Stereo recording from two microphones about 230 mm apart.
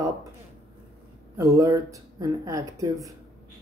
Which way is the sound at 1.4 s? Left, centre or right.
Centre.